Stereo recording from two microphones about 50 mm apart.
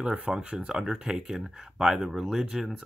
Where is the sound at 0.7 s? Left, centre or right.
Centre.